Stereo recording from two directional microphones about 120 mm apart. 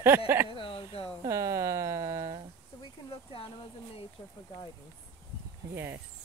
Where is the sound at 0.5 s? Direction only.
50° left (ahead or behind).